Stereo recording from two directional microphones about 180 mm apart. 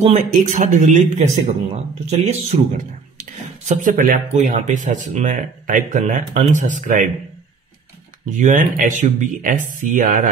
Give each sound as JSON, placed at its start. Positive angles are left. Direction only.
{"t": 0.0, "sound": "speech", "side_deg": -40}
{"t": 8.3, "sound": "speech", "side_deg": -45}